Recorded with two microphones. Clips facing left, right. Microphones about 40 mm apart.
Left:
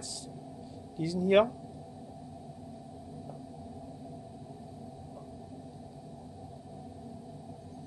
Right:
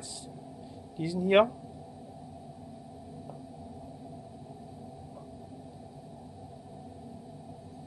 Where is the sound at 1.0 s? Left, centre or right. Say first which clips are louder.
Right 1 dB; right.